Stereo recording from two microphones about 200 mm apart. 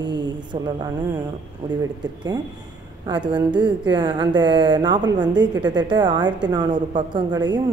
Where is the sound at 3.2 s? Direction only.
20° right (ahead or behind).